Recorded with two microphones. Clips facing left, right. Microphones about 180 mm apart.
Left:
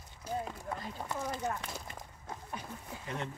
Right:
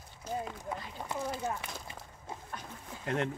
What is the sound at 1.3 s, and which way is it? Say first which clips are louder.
Speech: even; 10° right (ahead or behind).